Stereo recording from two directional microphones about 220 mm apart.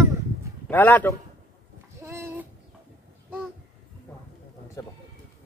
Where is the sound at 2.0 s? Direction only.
10° right (ahead or behind).